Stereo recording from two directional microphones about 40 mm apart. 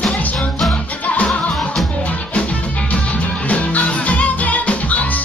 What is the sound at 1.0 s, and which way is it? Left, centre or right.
Music, left.